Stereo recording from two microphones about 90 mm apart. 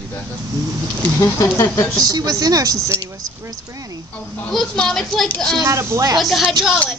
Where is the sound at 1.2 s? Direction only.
35° left (ahead or behind).